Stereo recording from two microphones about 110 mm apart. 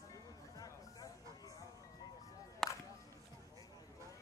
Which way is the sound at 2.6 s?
5° left (ahead or behind).